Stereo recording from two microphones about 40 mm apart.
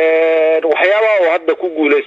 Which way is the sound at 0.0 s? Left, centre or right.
Centre.